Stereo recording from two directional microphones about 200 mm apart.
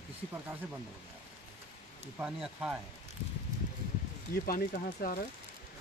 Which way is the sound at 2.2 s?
5° right (ahead or behind).